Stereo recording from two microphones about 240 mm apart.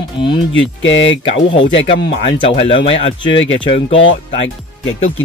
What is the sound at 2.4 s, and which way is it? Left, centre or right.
Speech, left.